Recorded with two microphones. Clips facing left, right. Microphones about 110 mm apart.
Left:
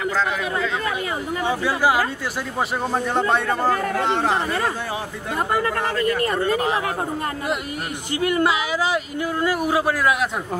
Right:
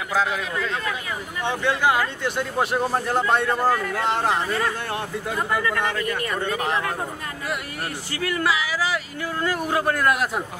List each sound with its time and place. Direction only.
1.4 s a man's voice: 10° left (ahead or behind)
3.6 s speech: 35° left (ahead or behind)
4.1 s a man's voice: centre (ahead or behind)
5.5 s speech: 40° left (ahead or behind)
8.2 s speech: 20° left (ahead or behind)
9.5 s speech: 10° left (ahead or behind)